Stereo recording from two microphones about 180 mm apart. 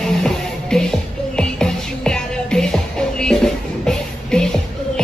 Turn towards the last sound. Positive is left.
turn(degrees=5)  # may be behind; listen again after turning